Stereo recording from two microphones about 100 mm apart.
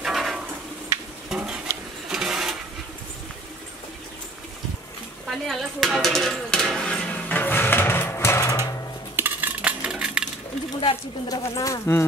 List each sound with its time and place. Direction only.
0.0 s a sound: 5° right (ahead or behind)
2.0 s sewing machine: 5° right (ahead or behind)
5.2 s a sound: centre (ahead or behind); by 8.5 s 30° left (ahead or behind)
9.1 s dishes: 20° right (ahead or behind)
9.6 s dishes: 10° right (ahead or behind)
11.2 s speech: 35° left (ahead or behind)